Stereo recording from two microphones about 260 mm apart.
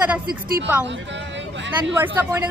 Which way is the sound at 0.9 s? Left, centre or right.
Right.